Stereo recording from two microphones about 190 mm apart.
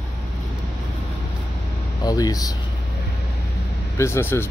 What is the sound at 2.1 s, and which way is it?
Speech, 20° left (ahead or behind).